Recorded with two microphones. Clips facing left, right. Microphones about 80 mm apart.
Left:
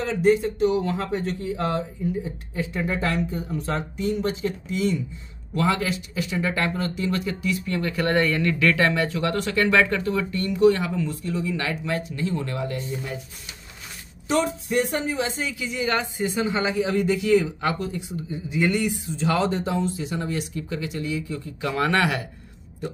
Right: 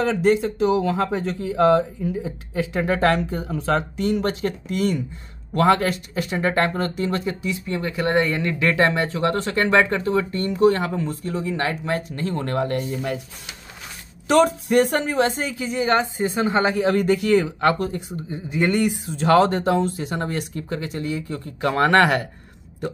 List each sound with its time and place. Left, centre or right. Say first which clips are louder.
0.0 s speech: right 2 dB; right
14.2 s speech: right 6 dB; right
15.4 s speech: right 4 dB; right
18.9 s speech: right 6 dB; right